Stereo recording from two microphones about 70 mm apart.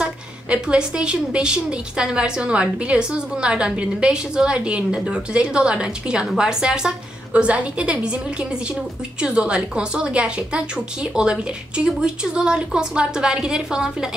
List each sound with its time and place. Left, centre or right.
0.0 s a woman's voice: centre